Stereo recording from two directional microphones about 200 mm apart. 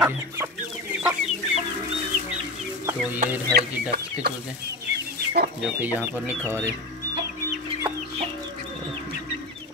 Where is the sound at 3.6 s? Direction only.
50° right (ahead or behind).